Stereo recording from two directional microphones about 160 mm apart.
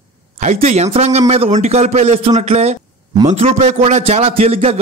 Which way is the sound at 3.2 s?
45° right (ahead or behind).